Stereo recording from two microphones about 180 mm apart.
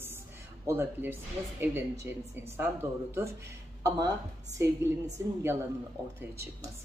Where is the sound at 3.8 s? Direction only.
20° right (ahead or behind).